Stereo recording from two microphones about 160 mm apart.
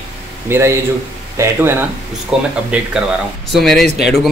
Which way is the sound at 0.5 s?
15° right (ahead or behind).